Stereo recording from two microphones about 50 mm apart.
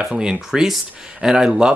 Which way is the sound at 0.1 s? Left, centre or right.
Centre.